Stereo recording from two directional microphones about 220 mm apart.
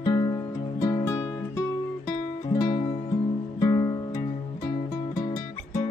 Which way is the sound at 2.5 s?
25° left (ahead or behind).